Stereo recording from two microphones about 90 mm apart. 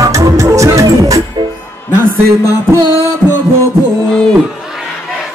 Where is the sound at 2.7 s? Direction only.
35° right (ahead or behind).